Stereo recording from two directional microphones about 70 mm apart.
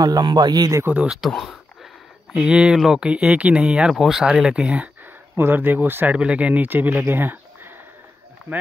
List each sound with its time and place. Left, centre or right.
0.0 s speech: right
1.0 s speech: centre
2.3 s speech: centre
5.3 s speech: right